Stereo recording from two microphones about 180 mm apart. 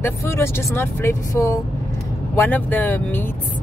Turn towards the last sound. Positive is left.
turn(degrees=10)  # may be behind; listen again after turning